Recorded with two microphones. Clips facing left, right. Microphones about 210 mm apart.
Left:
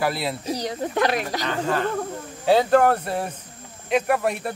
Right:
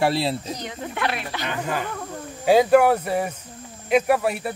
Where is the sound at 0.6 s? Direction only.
40° left (ahead or behind).